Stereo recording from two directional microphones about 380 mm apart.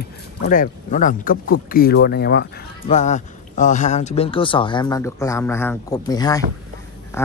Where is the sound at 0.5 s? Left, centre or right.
Left.